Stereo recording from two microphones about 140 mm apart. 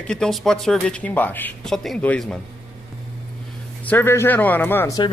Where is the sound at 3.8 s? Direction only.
15° left (ahead or behind).